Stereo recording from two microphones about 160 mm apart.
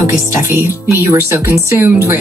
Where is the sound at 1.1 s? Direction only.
15° right (ahead or behind).